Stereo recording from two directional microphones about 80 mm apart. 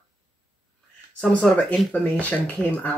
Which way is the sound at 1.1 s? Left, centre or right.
Centre.